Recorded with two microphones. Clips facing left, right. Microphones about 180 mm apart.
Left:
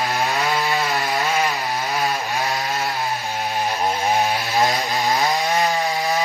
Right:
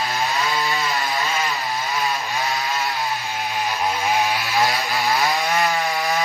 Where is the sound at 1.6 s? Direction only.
55° left (ahead or behind).